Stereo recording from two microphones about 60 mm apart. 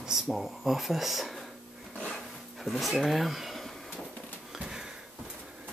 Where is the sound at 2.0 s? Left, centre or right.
Centre.